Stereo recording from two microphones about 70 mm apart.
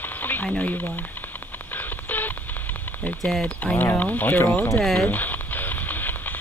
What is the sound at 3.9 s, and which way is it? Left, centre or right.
Speech, left.